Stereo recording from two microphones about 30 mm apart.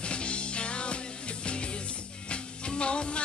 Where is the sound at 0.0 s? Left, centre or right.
Left.